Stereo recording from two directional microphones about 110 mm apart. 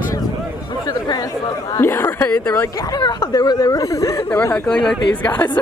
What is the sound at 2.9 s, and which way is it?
Speech, 35° left (ahead or behind).